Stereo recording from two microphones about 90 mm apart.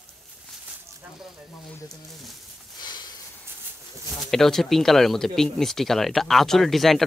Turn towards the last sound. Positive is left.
turn(degrees=0)  # may be behind; listen again after turning